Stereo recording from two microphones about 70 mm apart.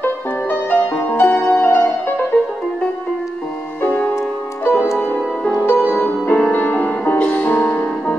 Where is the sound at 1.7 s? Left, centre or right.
Left.